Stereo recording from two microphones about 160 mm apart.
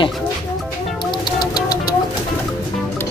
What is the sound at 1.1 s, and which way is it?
Vehicle, 30° left (ahead or behind).